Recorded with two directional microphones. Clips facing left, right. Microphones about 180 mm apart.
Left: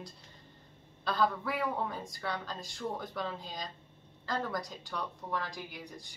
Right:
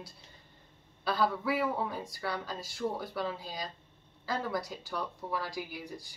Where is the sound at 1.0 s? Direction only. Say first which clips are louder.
Right 1 dB; 5° right (ahead or behind).